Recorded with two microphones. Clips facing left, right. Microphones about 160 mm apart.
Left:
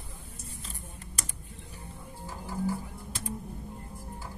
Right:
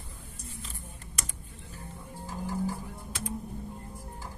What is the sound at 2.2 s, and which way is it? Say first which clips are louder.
Music: right 1 dB; 15° right (ahead or behind).